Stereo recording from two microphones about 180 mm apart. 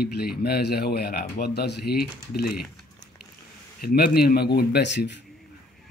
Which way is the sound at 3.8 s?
60° left (ahead or behind).